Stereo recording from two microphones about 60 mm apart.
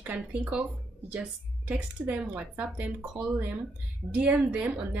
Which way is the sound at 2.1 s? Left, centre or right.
Right.